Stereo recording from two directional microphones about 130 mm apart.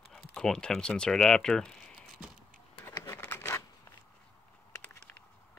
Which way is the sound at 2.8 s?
20° left (ahead or behind).